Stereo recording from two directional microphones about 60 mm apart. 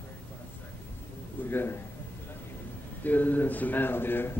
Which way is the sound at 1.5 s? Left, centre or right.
Left.